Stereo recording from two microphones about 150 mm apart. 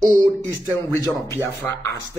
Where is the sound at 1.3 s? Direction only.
15° left (ahead or behind).